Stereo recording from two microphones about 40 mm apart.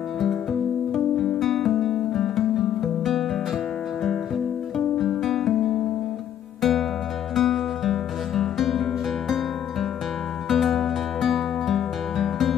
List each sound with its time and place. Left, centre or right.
0.2 s music: centre
4.7 s music: centre
10.5 s music: centre